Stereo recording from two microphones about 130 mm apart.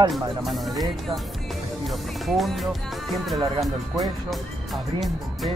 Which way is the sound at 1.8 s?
Centre (ahead or behind).